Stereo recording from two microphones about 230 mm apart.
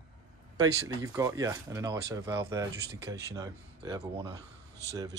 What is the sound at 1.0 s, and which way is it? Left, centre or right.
Speech, centre.